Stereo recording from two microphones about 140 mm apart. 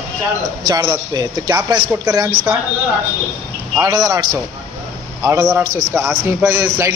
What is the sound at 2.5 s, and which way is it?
Speech, 15° right (ahead or behind).